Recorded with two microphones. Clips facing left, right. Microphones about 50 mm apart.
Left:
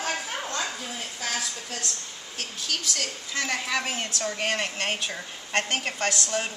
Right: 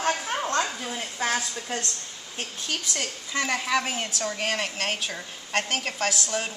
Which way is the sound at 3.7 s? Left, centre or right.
Centre.